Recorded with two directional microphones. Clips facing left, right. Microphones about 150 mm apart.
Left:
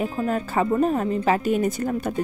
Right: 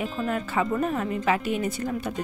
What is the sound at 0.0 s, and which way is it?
Speech, 40° left (ahead or behind).